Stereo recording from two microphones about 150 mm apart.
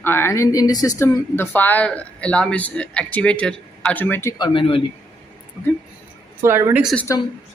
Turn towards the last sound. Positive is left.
turn(degrees=20)  # may be behind; listen again after turning